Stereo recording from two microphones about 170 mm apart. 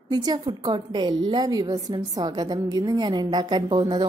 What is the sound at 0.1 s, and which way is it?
A woman's voice, 25° right (ahead or behind).